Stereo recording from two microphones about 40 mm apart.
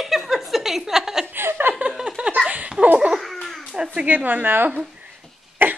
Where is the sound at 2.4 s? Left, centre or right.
Right.